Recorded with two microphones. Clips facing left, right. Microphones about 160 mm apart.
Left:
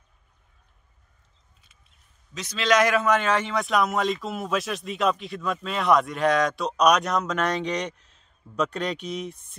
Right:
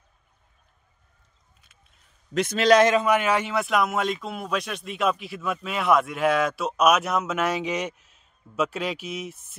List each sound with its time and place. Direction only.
2.3 s a man's voice: 55° right (ahead or behind)
2.6 s a man's voice: 30° right (ahead or behind)
3.1 s speech: 10° right (ahead or behind)